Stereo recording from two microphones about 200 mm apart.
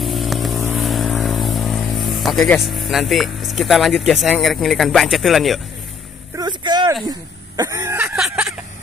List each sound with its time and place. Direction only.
0.0 s vehicle: centre (ahead or behind)
0.7 s speech: centre (ahead or behind)
6.3 s vehicle: 20° right (ahead or behind)
7.1 s speech: 15° right (ahead or behind)